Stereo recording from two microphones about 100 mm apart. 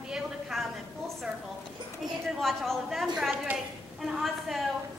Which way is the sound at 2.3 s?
Centre (ahead or behind).